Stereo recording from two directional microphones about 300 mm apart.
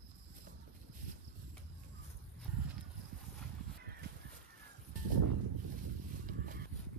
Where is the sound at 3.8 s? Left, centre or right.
Right.